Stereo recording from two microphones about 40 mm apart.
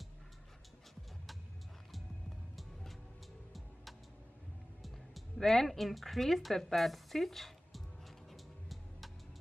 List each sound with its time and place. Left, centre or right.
4.8 s speech: centre
8.3 s music: centre